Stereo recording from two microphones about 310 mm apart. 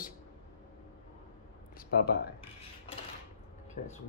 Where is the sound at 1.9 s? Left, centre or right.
Left.